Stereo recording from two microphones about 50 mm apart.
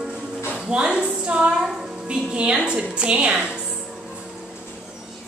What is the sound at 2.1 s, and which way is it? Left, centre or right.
A woman's voice, centre.